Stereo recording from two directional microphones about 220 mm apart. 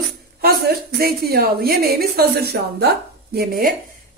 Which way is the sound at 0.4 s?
45° right (ahead or behind).